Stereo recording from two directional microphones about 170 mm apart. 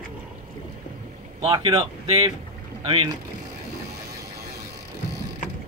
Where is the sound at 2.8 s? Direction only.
30° right (ahead or behind).